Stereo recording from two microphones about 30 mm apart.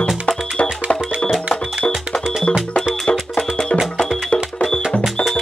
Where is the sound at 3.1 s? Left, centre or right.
Left.